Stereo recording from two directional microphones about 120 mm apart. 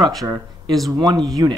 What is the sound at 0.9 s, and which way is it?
Speech, 35° right (ahead or behind).